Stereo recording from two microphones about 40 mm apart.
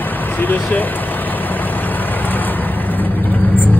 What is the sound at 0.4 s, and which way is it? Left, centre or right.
Speech, left.